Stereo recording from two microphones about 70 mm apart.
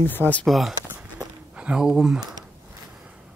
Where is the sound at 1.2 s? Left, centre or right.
Right.